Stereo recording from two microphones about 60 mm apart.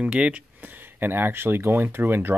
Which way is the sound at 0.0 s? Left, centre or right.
Centre.